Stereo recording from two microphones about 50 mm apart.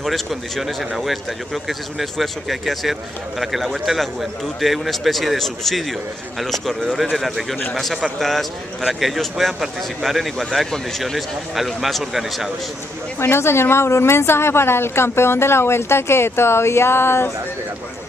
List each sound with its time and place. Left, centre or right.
0.0 s speech: centre
13.2 s a woman's voice: left